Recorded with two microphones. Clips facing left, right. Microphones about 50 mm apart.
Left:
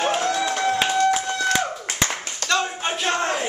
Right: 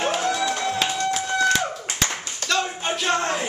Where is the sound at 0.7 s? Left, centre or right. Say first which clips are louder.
Left 4 dB; centre.